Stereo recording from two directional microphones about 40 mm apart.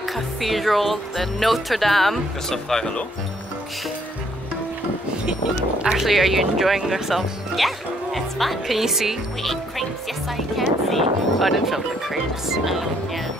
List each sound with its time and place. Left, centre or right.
0.1 s speech: centre
5.9 s speech: centre
9.4 s speech: centre